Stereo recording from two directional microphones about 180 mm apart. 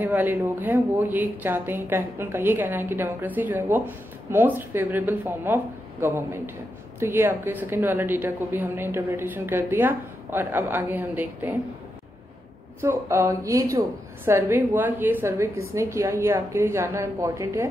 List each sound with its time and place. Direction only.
0.0 s a woman's voice: 10° right (ahead or behind)
12.8 s a woman's voice: 15° right (ahead or behind)